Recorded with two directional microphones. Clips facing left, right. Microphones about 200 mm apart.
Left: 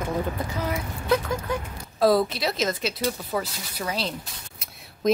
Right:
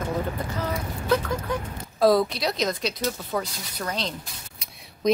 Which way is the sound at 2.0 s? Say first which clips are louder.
Right 1 dB; centre (ahead or behind).